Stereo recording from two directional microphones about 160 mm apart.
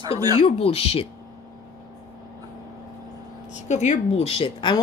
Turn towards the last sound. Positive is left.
turn(degrees=30)  # may be behind; listen again after turning